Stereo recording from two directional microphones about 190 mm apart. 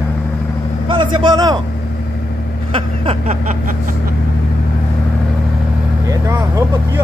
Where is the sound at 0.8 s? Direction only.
25° right (ahead or behind).